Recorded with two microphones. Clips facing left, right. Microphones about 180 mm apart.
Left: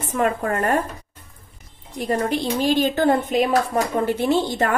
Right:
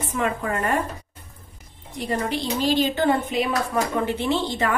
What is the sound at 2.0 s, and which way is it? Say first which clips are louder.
A woman's voice: left 4 dB; 50° left (ahead or behind).